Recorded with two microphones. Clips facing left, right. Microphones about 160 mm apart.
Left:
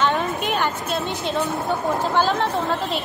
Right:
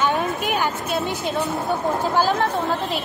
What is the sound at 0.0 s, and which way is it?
A woman's voice, centre (ahead or behind).